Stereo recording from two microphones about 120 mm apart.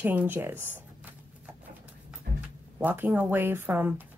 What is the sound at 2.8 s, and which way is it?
Speech, 15° right (ahead or behind).